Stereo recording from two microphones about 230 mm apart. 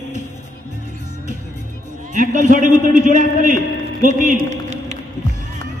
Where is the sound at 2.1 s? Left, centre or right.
Right.